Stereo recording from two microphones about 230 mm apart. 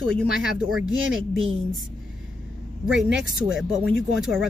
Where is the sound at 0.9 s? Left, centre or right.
Right.